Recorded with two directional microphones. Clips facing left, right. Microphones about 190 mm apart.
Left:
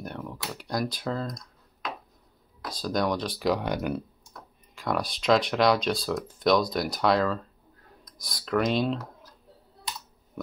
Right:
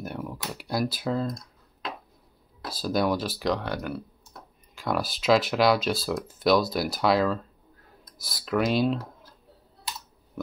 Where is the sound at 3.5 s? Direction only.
15° left (ahead or behind).